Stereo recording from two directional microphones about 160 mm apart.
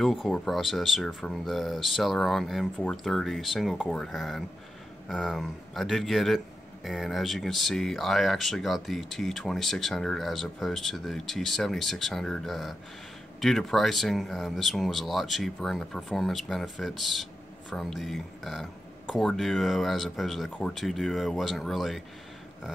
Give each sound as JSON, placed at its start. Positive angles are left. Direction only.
{"t": 0.0, "sound": "speech", "side_deg": 0}